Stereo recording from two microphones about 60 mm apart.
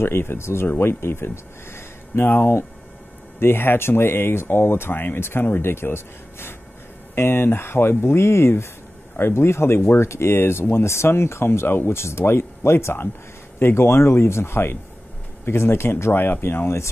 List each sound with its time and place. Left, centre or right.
0.0 s speech: left